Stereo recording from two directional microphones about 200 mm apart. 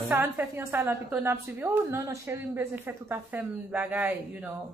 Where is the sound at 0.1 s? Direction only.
10° right (ahead or behind).